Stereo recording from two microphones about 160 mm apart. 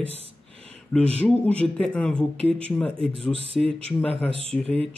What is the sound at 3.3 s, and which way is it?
Speech, 35° right (ahead or behind).